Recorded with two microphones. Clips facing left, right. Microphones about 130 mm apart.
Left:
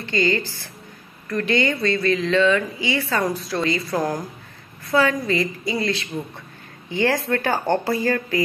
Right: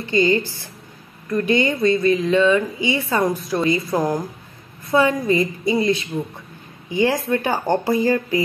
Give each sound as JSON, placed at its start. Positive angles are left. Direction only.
{"t": 0.0, "sound": "a woman's voice", "side_deg": -20}